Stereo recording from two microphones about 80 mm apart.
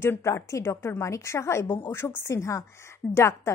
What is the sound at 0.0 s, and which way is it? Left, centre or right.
A woman's voice, left.